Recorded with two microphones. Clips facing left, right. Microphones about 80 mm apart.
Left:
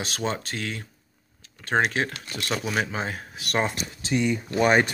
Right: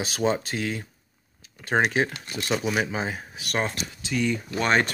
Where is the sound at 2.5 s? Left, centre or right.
Centre.